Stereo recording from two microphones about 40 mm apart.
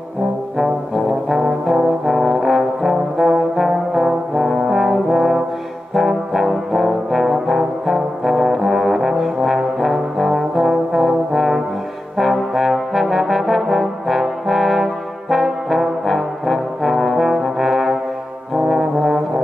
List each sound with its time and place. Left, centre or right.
1.7 s brass instrument: centre
17.3 s trombone: centre
18.5 s brass instrument: centre